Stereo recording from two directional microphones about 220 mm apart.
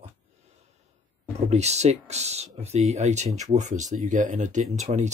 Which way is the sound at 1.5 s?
30° right (ahead or behind).